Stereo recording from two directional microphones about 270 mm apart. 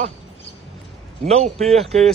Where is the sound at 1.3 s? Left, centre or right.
Right.